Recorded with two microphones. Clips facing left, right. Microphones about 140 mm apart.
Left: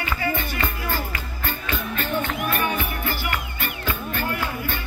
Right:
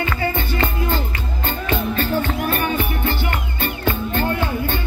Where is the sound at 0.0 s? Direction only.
25° right (ahead or behind).